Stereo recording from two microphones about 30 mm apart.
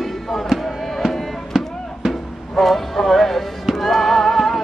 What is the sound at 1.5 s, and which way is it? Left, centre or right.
Music, right.